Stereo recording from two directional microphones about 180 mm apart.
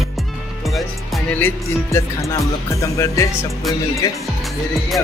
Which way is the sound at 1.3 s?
15° left (ahead or behind).